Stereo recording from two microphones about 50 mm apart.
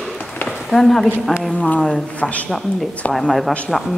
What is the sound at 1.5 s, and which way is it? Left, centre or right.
Speech, left.